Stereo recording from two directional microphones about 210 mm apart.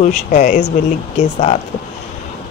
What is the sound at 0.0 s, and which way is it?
Speech, 35° left (ahead or behind).